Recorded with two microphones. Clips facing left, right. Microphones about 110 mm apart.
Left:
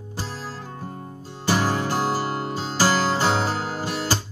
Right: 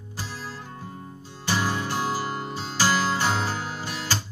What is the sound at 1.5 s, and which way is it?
Music, 35° left (ahead or behind).